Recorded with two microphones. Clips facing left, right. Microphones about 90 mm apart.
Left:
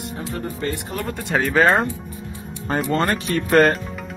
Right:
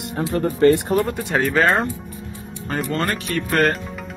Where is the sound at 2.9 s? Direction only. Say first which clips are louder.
Left 3 dB; 25° left (ahead or behind).